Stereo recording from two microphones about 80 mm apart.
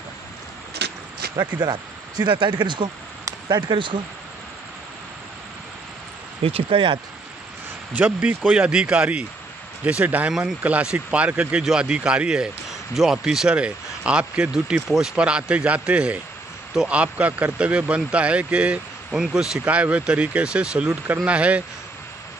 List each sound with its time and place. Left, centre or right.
1.3 s speech: right
6.7 s speech: right
7.9 s speech: right